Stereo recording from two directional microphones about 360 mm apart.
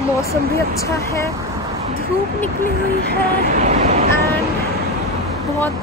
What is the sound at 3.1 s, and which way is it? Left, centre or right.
Speech, right.